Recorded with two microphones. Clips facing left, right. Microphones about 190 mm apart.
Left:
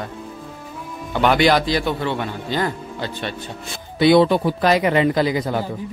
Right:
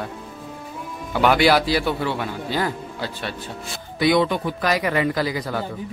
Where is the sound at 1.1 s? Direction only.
5° right (ahead or behind).